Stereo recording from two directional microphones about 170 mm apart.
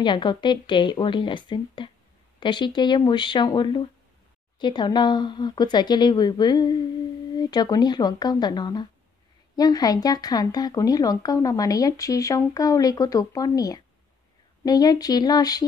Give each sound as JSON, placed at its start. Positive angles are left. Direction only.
{"t": 0.0, "sound": "speech", "side_deg": 25}